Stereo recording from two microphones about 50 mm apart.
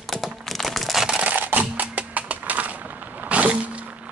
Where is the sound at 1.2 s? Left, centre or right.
Right.